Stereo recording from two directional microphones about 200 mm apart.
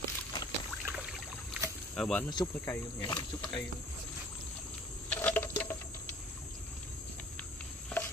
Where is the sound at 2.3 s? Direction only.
15° left (ahead or behind).